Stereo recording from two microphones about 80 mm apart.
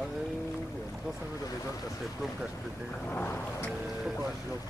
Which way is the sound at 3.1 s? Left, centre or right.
Left.